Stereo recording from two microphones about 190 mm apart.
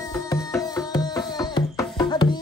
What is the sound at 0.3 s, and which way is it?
Music, 20° left (ahead or behind).